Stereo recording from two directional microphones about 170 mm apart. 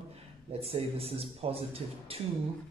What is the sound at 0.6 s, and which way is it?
A man's voice, 35° right (ahead or behind).